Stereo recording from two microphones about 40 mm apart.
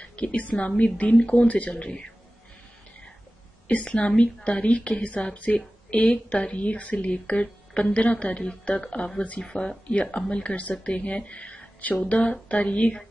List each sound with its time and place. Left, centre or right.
0.0 s a woman's voice: left
1.7 s speech: left
3.6 s a woman's voice: left